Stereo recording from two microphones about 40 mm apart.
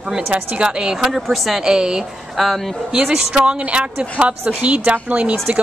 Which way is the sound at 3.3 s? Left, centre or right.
Right.